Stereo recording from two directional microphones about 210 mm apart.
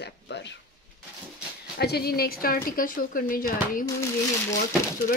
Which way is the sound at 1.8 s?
50° left (ahead or behind).